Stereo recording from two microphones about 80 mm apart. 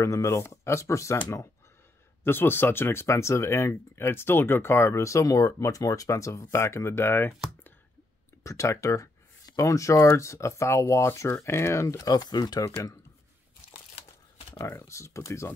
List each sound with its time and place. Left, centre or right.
0.0 s speech: left
2.2 s speech: left
8.5 s speech: left
12.1 s speech: left
12.6 s speech: left
14.6 s speech: left